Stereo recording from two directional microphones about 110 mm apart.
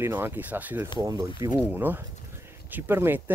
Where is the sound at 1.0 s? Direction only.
45° right (ahead or behind).